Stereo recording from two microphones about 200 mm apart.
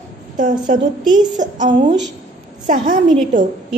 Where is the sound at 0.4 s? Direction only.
40° right (ahead or behind).